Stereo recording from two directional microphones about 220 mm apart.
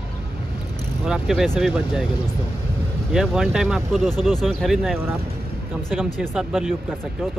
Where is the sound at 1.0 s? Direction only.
Centre (ahead or behind).